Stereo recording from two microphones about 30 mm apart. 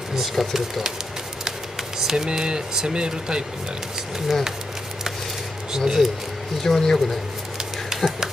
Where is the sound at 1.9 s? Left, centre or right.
Centre.